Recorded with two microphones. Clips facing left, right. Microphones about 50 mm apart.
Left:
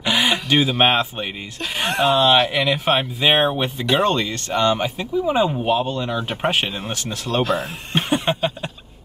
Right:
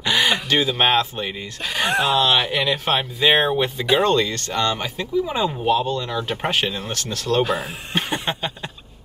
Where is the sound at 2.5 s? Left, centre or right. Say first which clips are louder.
Left 2 dB; centre.